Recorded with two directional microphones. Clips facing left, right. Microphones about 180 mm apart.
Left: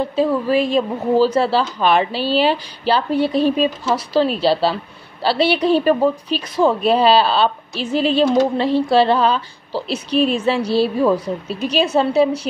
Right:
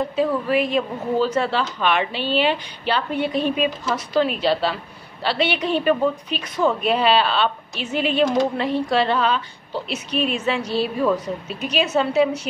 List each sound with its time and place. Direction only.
0.1 s a woman's voice: 30° left (ahead or behind)